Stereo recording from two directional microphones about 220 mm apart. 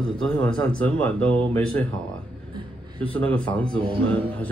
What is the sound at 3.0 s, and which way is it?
Speech, 5° left (ahead or behind).